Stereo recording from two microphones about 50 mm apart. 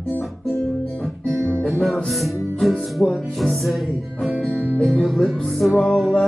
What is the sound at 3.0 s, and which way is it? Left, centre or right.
Music, centre.